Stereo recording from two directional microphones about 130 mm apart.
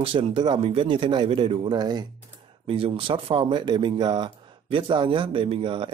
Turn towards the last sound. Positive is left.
turn(degrees=-40)  # may be behind; listen again after turning